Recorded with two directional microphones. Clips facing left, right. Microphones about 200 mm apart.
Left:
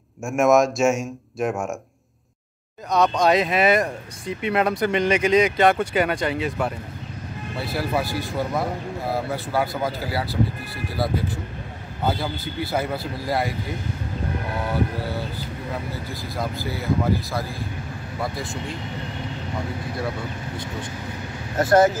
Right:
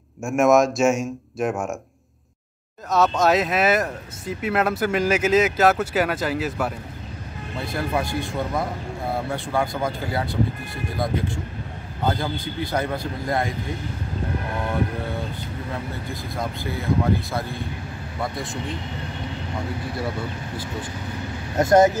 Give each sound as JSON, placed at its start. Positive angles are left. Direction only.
{"t": 0.2, "sound": "speech", "side_deg": 0}
{"t": 2.9, "sound": "speech", "side_deg": 0}
{"t": 12.0, "sound": "speech", "side_deg": 5}
{"t": 15.9, "sound": "speech", "side_deg": 0}
{"t": 21.5, "sound": "speech", "side_deg": -20}